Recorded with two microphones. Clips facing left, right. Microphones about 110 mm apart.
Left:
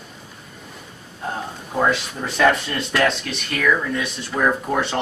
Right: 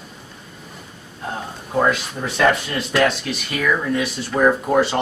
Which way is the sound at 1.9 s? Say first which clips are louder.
Right 1 dB; centre (ahead or behind).